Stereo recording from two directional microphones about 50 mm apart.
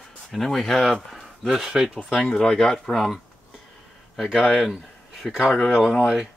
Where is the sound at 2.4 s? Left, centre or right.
Centre.